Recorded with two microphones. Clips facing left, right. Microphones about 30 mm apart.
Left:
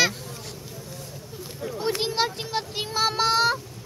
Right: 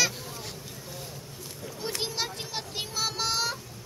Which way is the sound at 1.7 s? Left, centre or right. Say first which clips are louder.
Left 7 dB; left.